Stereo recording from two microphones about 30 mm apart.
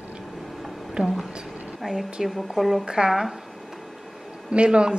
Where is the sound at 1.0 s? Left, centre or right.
Right.